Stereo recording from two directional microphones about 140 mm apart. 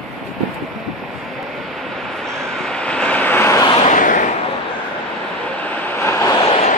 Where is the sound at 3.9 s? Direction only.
70° left (ahead or behind).